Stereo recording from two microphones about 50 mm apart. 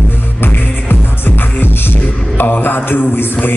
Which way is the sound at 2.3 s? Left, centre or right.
Left.